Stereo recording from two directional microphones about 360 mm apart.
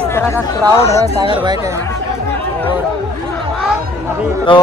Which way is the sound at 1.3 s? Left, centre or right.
Centre.